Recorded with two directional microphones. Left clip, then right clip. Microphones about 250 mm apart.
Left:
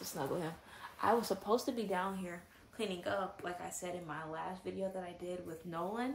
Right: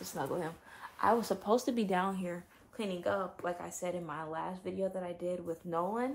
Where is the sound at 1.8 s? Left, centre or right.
Right.